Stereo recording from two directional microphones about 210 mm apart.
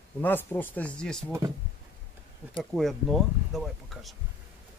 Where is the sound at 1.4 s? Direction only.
15° right (ahead or behind).